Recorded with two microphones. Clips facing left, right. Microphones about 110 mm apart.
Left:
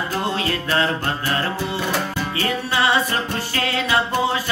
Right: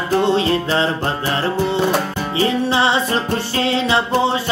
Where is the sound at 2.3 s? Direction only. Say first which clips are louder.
Right 6 dB; 25° right (ahead or behind).